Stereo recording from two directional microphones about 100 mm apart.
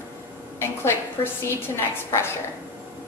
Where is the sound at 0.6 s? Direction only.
25° left (ahead or behind).